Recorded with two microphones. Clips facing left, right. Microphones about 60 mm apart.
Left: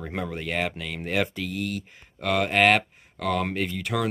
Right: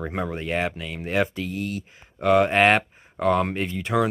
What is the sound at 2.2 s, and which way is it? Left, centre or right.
Speech, right.